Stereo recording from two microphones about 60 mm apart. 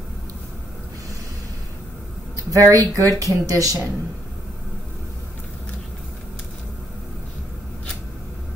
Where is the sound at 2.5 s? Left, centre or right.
Right.